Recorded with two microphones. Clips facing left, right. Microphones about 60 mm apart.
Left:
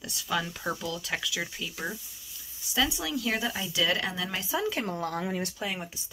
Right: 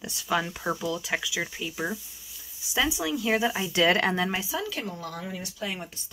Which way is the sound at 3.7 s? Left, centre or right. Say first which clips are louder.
Right 6 dB; right.